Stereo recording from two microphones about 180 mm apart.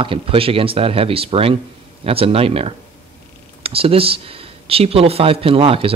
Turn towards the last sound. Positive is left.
turn(degrees=-30)  # may be behind; listen again after turning